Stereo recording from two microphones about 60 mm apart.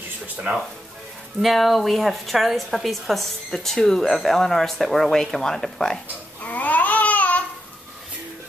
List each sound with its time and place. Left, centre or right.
1.4 s a woman's voice: centre
6.4 s babbling: left